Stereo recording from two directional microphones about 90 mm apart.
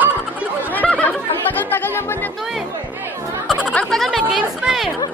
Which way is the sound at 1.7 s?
25° left (ahead or behind).